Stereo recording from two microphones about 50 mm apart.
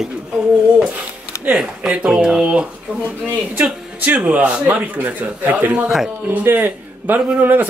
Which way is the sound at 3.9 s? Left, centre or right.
Right.